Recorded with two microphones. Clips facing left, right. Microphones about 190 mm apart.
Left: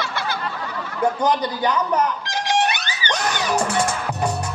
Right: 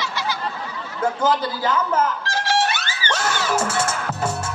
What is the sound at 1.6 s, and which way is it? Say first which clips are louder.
Music: even; 15° left (ahead or behind).